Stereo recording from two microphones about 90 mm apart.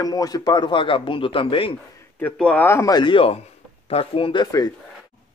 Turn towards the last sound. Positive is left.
turn(degrees=45)  # may be behind; listen again after turning